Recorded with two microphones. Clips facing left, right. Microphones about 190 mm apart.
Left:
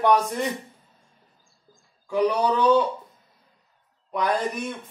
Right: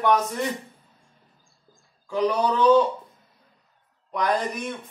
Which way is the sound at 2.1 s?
10° left (ahead or behind).